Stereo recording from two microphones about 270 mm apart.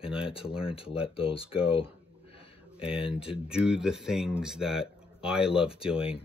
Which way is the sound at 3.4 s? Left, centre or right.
Centre.